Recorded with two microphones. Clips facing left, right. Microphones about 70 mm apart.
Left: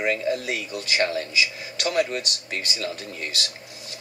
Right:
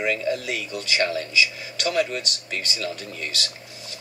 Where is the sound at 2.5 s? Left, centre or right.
Left.